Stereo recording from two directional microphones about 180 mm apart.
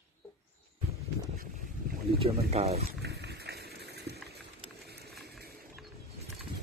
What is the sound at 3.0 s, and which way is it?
Wild animals, 65° right (ahead or behind).